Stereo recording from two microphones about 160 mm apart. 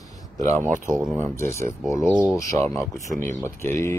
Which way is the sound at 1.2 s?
15° left (ahead or behind).